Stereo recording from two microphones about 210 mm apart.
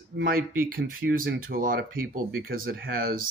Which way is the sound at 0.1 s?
55° right (ahead or behind).